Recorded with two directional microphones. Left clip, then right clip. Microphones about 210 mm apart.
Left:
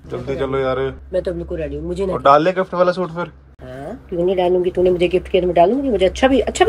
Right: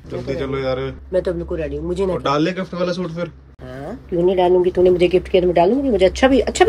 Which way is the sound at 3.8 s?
10° right (ahead or behind).